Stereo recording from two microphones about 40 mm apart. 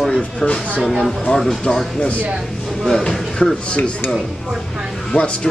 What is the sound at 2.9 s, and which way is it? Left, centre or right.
Speech, centre.